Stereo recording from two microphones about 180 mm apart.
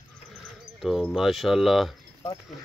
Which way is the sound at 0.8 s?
Centre (ahead or behind).